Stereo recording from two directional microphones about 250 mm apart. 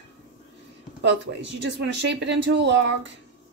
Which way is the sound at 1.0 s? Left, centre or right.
Right.